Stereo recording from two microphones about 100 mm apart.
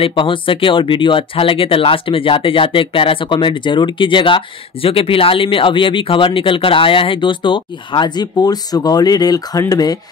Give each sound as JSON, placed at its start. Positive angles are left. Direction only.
{"t": 0.0, "sound": "speech", "side_deg": 60}